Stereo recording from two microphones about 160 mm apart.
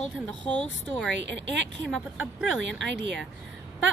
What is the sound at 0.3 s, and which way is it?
Speech, 5° left (ahead or behind).